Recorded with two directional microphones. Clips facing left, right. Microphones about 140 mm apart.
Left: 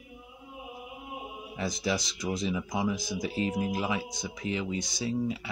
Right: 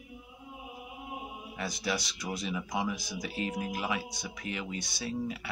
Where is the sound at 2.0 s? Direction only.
Centre (ahead or behind).